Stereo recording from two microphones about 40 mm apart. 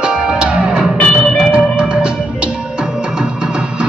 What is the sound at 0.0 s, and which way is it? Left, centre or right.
Music, right.